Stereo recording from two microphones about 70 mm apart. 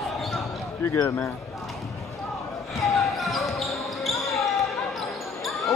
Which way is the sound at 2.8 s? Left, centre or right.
Centre.